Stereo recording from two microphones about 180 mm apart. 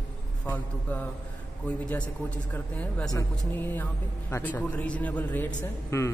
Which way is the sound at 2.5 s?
10° left (ahead or behind).